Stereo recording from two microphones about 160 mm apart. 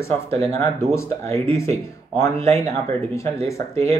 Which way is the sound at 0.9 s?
15° left (ahead or behind).